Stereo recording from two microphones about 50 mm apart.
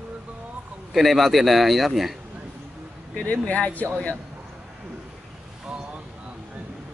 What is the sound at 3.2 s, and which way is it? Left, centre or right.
Speech, left.